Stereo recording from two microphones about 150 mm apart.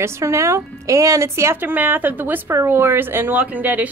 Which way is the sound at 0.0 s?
20° right (ahead or behind).